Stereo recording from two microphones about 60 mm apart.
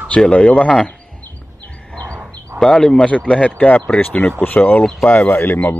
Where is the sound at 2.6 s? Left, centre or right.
Centre; by 4.8 s left.